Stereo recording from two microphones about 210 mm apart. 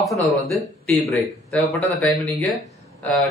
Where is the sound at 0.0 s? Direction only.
Centre (ahead or behind).